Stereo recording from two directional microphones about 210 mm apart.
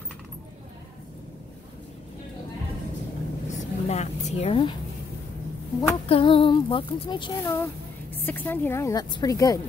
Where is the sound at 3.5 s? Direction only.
30° left (ahead or behind).